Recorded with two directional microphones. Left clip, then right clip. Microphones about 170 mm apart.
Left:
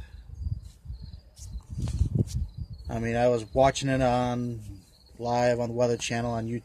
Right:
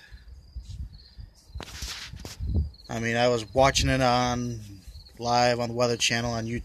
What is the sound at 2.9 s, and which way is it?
Speech, 5° left (ahead or behind).